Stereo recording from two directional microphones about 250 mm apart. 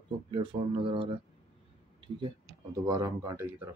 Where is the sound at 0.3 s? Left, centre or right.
Centre.